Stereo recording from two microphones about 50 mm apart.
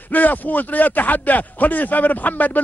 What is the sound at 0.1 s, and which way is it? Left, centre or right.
A man's voice, left.